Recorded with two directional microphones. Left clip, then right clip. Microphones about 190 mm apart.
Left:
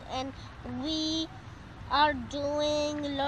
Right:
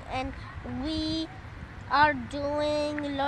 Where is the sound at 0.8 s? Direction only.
25° left (ahead or behind).